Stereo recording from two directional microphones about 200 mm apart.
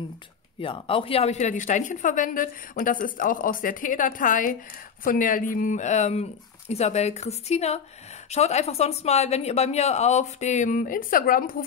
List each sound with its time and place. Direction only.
0.6 s a woman's voice: 25° left (ahead or behind); by 11.5 s 45° left (ahead or behind)